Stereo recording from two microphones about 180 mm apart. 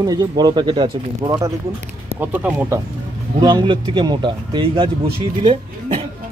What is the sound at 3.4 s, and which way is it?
Speech, 25° right (ahead or behind).